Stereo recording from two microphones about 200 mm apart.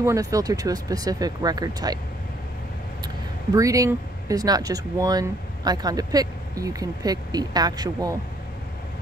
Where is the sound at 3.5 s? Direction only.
15° right (ahead or behind).